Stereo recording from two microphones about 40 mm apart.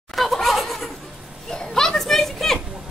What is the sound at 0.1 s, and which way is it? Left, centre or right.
Laughter, centre.